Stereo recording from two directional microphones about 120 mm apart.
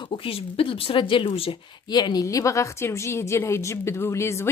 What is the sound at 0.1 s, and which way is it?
Speech, 50° left (ahead or behind).